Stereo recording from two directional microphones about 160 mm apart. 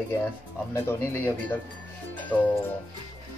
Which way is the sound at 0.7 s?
15° left (ahead or behind).